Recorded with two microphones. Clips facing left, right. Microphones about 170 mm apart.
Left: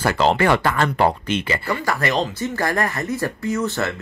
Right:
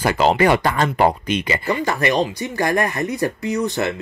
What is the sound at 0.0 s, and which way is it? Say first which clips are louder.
Speech: right 2 dB; 15° right (ahead or behind).